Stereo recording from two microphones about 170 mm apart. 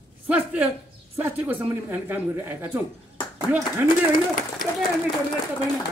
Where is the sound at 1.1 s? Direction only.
10° right (ahead or behind).